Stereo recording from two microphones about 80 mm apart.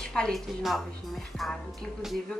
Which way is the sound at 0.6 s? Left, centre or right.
Centre.